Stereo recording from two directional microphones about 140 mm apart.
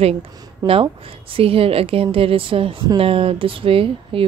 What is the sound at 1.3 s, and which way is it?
Speech, 40° right (ahead or behind).